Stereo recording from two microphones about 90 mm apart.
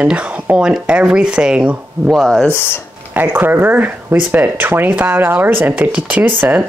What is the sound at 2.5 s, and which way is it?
Speech, 30° left (ahead or behind).